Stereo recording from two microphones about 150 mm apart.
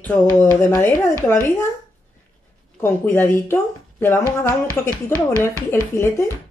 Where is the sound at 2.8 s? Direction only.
15° left (ahead or behind).